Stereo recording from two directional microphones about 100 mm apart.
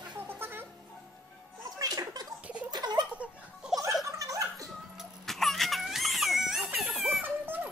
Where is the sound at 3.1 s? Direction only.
15° right (ahead or behind).